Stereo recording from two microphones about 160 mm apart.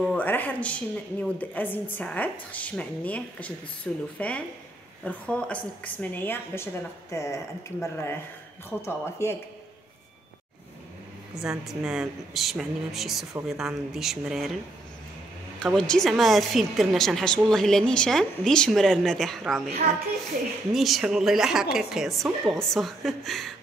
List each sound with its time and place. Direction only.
0.0 s a woman's voice: 5° left (ahead or behind)
5.0 s a woman's voice: 10° left (ahead or behind)
11.4 s a woman's voice: 5° right (ahead or behind)
15.6 s a woman's voice: 5° left (ahead or behind)
20.7 s a woman's voice: centre (ahead or behind)